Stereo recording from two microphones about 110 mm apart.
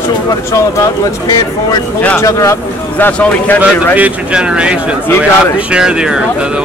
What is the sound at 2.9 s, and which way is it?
Speech, 15° left (ahead or behind).